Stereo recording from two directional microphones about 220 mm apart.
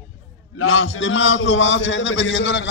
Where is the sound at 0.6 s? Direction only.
65° left (ahead or behind).